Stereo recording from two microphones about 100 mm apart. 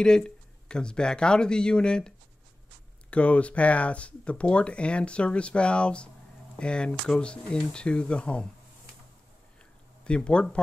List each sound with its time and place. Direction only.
0.0 s speech: 10° left (ahead or behind)
10.0 s speech: 10° left (ahead or behind)